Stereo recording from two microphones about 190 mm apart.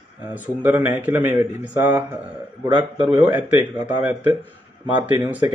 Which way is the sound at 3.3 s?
10° right (ahead or behind).